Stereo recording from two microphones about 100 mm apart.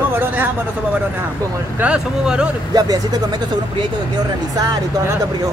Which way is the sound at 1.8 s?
10° right (ahead or behind).